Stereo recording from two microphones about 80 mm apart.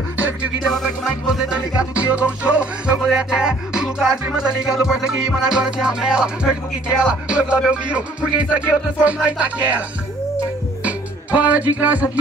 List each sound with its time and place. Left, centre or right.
1.3 s music: centre